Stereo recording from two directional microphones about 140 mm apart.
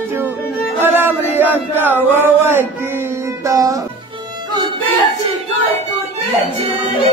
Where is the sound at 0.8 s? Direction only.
15° right (ahead or behind).